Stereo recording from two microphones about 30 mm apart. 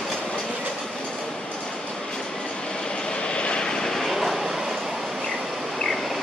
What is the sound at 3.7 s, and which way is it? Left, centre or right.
Vehicle, centre.